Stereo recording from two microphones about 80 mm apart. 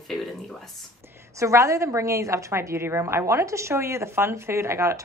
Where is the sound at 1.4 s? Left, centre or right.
Right.